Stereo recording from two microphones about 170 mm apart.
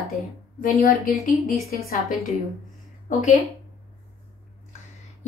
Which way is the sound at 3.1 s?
50° left (ahead or behind).